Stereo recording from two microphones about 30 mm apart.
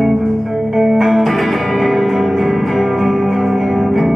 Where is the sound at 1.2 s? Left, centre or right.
Centre.